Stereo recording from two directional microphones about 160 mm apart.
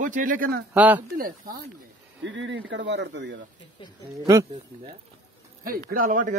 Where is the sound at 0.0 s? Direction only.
55° right (ahead or behind).